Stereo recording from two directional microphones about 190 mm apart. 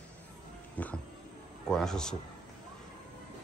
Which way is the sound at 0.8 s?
10° left (ahead or behind).